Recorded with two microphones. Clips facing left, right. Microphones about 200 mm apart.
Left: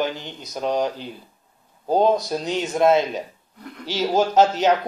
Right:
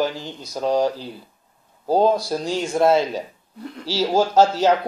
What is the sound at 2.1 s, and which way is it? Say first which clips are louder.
Speech: even; 20° left (ahead or behind).